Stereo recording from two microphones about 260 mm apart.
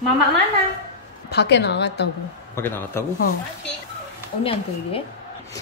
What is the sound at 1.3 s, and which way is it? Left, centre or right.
Speech, left.